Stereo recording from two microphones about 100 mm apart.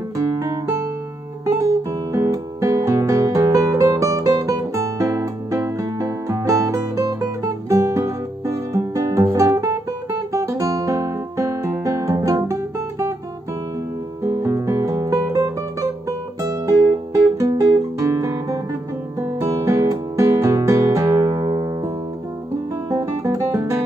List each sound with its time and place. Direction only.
0.2 s music: 35° right (ahead or behind)
14.2 s music: 30° right (ahead or behind)
22.8 s guitar: 35° right (ahead or behind)